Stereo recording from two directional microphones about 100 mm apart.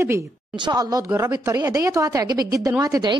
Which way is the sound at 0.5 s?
45° right (ahead or behind).